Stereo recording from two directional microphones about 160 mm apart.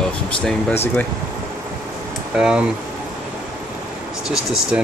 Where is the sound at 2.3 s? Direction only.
5° right (ahead or behind).